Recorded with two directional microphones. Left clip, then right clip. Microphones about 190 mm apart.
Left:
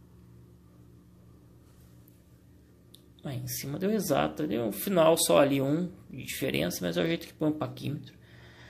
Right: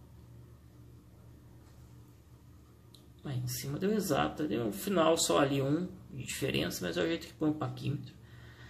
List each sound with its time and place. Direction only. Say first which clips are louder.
3.3 s speech: left 3 dB; 40° left (ahead or behind)